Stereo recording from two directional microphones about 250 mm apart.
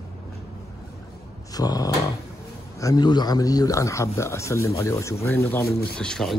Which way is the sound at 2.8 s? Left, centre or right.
Centre.